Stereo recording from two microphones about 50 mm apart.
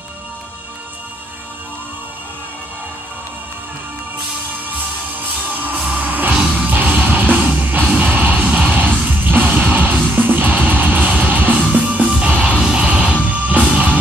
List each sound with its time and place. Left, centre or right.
5.5 s music: right; by 12.8 s centre
12.8 s music: right